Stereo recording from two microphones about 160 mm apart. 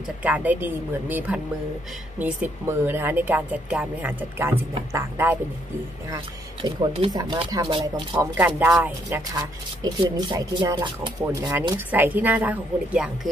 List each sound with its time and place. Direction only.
0.2 s speech: 10° right (ahead or behind)
6.6 s speech: 25° right (ahead or behind)
8.4 s speech: 10° right (ahead or behind)
9.8 s speech: 25° right (ahead or behind)
11.7 s speech: 10° right (ahead or behind)